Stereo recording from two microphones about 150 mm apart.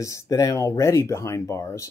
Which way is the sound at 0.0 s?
20° left (ahead or behind).